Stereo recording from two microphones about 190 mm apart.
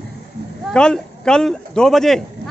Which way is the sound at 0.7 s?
5° left (ahead or behind).